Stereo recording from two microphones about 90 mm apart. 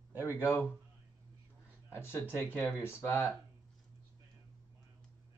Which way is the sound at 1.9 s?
25° left (ahead or behind).